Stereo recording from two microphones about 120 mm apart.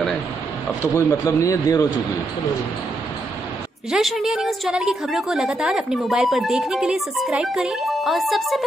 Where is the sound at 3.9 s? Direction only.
Centre (ahead or behind).